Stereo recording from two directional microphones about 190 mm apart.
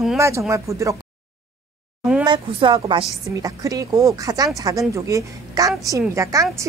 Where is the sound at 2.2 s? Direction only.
25° right (ahead or behind).